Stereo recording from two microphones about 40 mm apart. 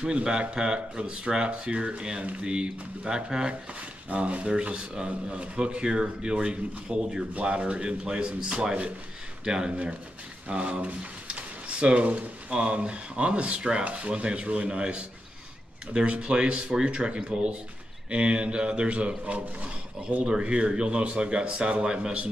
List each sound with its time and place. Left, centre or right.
0.0 s speech: right
4.1 s speech: right
9.4 s speech: centre
10.5 s speech: right
20.2 s speech: right